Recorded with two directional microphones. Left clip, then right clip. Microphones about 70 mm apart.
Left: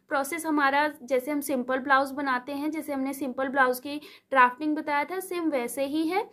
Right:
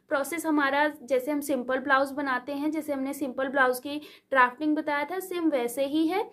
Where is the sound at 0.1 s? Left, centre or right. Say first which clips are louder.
Even; left.